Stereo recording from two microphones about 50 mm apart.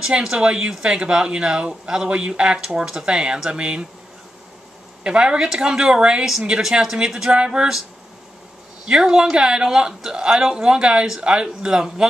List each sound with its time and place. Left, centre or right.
0.2 s speech: centre
5.0 s speech: centre
7.3 s speech: right
8.8 s speech: centre